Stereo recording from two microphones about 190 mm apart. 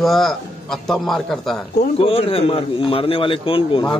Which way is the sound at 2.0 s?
30° left (ahead or behind).